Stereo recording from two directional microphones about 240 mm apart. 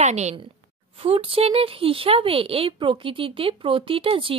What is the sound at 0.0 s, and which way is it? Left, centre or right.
A woman's voice, right.